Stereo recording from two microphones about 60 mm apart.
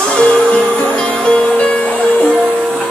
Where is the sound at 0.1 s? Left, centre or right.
Centre.